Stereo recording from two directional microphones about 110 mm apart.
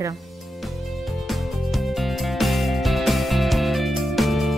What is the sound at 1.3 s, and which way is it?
Music, centre (ahead or behind).